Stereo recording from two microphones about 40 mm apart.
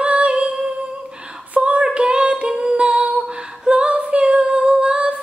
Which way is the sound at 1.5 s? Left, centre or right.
Right.